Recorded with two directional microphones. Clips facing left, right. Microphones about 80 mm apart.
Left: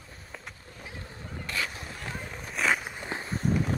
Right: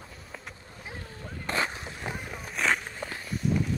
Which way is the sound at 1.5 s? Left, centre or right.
Right.